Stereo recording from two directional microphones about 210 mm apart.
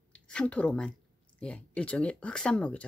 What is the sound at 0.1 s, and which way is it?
Speech, 5° left (ahead or behind).